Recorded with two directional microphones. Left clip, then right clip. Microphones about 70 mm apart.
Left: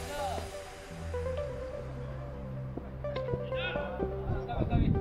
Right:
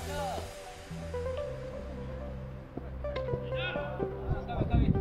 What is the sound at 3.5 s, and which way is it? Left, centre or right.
Music, centre.